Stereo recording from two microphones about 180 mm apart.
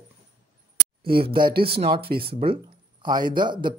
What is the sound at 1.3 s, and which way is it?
Speech, 25° right (ahead or behind).